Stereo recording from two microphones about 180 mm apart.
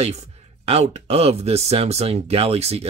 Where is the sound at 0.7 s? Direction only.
35° right (ahead or behind).